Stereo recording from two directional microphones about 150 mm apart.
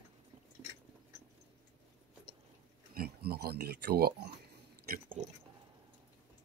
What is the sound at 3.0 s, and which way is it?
Speech, 90° right.